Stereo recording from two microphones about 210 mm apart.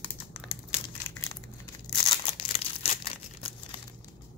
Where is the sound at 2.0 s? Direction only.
25° left (ahead or behind).